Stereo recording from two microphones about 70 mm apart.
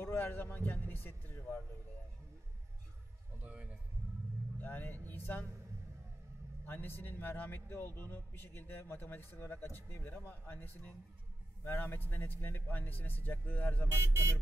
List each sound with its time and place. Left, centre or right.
0.0 s speech: left
3.4 s a man's voice: centre
4.6 s speech: left
6.6 s a man's voice: left
13.9 s speech: right